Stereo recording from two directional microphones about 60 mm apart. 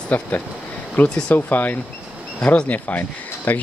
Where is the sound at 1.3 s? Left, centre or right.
Left.